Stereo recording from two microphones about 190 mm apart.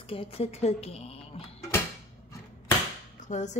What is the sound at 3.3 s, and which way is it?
Speech, 40° left (ahead or behind).